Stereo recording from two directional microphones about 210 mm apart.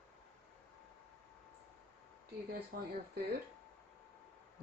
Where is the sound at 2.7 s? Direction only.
50° right (ahead or behind).